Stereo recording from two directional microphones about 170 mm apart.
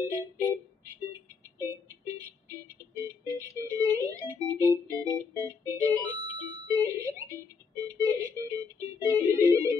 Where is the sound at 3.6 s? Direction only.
20° right (ahead or behind).